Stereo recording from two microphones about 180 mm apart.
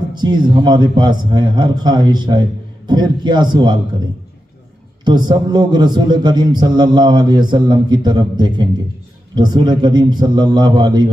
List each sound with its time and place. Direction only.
0.2 s a man's voice: 25° right (ahead or behind)
5.0 s a man's voice: 25° right (ahead or behind)